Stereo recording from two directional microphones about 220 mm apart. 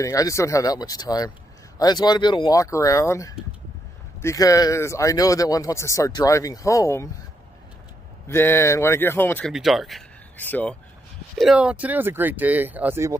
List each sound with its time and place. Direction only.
0.0 s speech: 15° left (ahead or behind)
8.3 s speech: 10° left (ahead or behind); by 13.1 s 10° right (ahead or behind)